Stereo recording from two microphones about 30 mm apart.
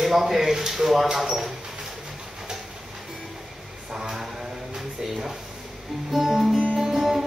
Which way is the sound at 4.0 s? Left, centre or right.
Centre.